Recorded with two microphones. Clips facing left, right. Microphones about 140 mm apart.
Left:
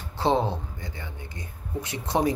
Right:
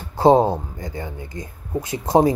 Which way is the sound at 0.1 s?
45° right (ahead or behind).